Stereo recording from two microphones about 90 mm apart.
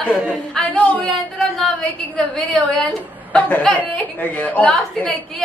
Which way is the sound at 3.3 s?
15° left (ahead or behind).